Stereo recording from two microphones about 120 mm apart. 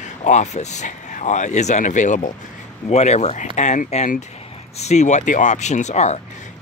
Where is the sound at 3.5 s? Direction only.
85° left.